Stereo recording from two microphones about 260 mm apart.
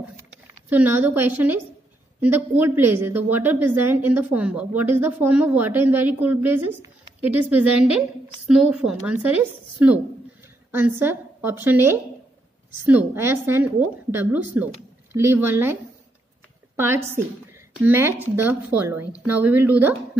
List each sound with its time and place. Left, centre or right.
0.7 s a woman's voice: centre